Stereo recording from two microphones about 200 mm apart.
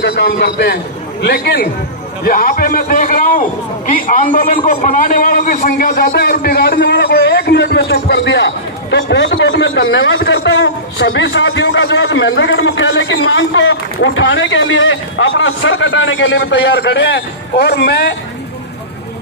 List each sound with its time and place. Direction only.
0.0 s a man's voice: 55° left (ahead or behind)
2.2 s a man's voice: 45° left (ahead or behind)
5.7 s a man's voice: 50° left (ahead or behind)